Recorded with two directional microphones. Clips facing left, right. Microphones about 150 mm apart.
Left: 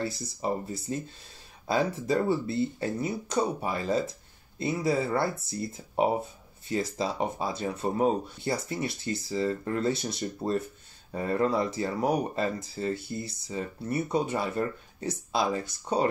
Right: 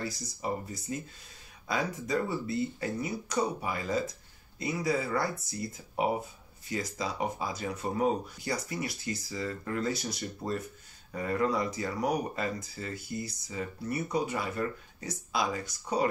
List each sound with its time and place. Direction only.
0.0 s speech: 30° left (ahead or behind)